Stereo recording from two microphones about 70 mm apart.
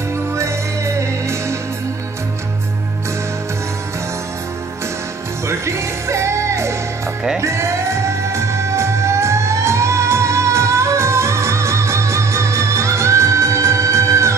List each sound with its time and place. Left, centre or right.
5.5 s music: right